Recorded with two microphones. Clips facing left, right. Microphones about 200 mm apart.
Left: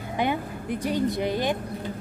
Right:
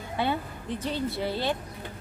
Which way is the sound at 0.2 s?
15° left (ahead or behind).